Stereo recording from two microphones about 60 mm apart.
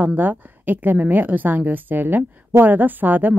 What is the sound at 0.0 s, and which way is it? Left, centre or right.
A woman's voice, right.